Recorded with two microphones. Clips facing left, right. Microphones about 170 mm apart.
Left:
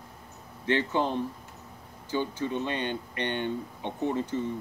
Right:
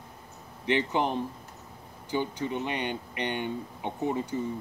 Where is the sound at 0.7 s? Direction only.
15° right (ahead or behind).